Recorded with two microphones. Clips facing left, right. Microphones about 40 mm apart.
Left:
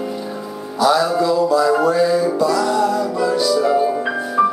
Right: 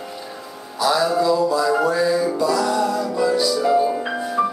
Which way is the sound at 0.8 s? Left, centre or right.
Centre.